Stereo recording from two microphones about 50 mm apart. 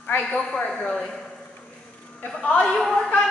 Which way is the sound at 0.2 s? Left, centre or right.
Centre.